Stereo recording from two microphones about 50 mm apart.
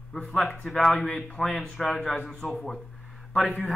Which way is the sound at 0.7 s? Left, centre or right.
Centre.